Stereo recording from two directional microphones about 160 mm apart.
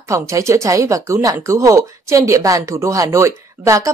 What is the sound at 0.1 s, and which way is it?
Speech, 20° right (ahead or behind).